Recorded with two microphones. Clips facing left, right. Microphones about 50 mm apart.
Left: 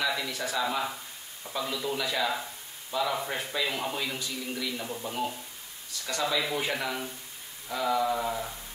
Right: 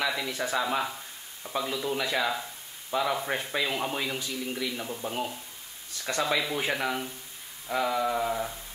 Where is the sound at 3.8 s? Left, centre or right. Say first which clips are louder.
Right 2 dB; centre.